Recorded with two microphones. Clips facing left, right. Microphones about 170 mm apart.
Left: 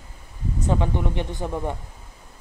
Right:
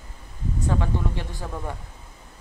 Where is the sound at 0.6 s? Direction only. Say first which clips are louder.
Left 2 dB; 20° left (ahead or behind).